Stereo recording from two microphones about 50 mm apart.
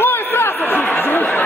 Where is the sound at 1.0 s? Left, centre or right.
Left.